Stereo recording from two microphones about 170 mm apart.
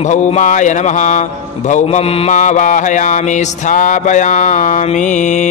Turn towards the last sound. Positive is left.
turn(degrees=45)  # may be behind; listen again after turning